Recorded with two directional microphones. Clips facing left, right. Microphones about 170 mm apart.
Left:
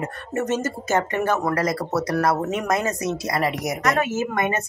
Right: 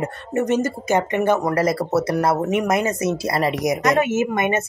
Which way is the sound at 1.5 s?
25° right (ahead or behind).